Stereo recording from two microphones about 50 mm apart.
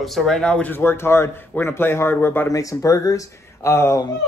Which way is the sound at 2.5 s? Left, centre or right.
Left.